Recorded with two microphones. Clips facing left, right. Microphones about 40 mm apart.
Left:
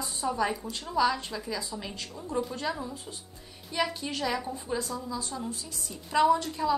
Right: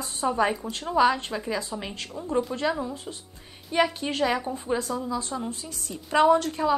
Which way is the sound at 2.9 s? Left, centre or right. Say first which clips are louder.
Right 5 dB; right.